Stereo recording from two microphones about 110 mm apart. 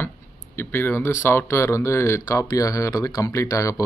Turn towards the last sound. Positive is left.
turn(degrees=30)  # may be behind; listen again after turning